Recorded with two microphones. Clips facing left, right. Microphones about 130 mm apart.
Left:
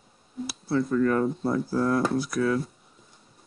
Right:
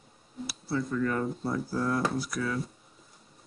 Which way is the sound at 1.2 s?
25° left (ahead or behind).